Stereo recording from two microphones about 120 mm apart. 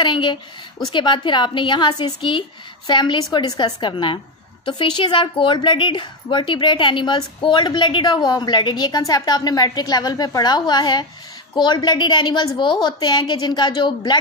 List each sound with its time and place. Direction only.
0.0 s a woman's voice: 40° left (ahead or behind)